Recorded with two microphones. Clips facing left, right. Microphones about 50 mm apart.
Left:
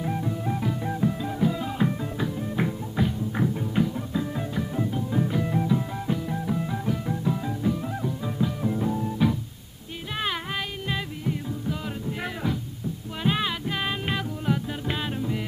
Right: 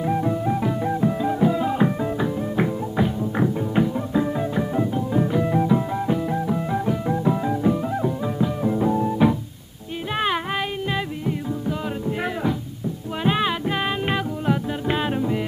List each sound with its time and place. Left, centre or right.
0.0 s music: right
13.2 s music: centre